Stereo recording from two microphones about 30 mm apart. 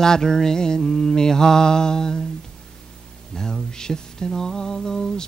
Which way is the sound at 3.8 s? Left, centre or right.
Left.